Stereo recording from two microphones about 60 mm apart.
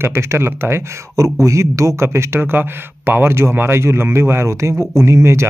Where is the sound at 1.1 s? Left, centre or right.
Right.